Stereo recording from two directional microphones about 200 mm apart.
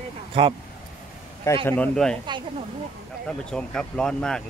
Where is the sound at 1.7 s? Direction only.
5° left (ahead or behind).